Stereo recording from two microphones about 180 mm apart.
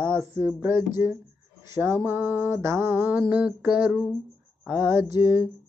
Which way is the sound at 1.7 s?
15° right (ahead or behind).